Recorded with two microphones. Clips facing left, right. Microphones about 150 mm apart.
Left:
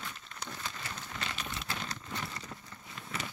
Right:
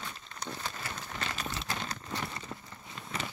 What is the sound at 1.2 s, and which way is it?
Crumpling, 40° right (ahead or behind).